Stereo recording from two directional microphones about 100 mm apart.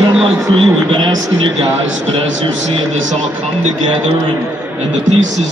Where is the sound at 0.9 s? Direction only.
60° right (ahead or behind).